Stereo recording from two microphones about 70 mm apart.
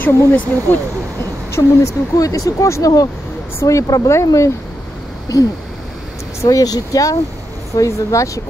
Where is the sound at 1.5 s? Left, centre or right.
Left.